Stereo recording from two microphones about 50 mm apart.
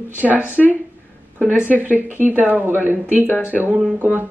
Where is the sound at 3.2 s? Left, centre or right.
Left.